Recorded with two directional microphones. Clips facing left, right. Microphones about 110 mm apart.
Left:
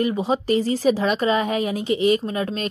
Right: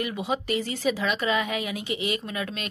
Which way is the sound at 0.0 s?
35° left (ahead or behind).